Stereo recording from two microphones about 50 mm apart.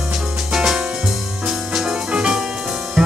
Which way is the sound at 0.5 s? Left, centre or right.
Centre.